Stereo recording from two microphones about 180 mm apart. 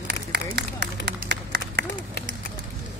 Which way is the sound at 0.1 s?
65° right (ahead or behind).